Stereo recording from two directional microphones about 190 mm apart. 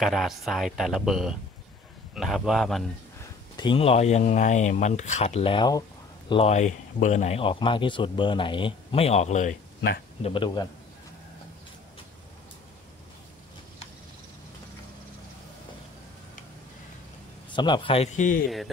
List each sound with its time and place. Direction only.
0.0 s speech: centre (ahead or behind)
3.2 s speech: 25° left (ahead or behind); by 9.6 s 40° left (ahead or behind)
10.2 s a man's voice: 25° left (ahead or behind)
17.5 s a man's voice: 25° left (ahead or behind); by 18.4 s 40° left (ahead or behind)